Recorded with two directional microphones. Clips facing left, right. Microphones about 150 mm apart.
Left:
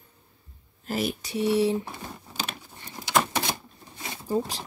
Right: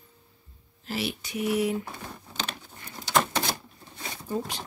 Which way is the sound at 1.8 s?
5° left (ahead or behind).